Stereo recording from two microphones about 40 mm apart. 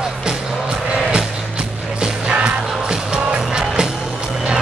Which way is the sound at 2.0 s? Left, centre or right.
Right.